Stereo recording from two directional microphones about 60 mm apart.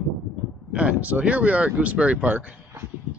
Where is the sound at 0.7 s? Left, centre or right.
Right.